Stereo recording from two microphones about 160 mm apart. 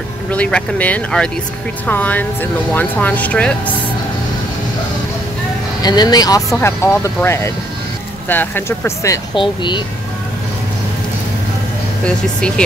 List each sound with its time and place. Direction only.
0.3 s speech: 5° left (ahead or behind)
5.8 s speech: 25° left (ahead or behind)
9.3 s speech: 30° left (ahead or behind)
12.0 s speech: 5° left (ahead or behind)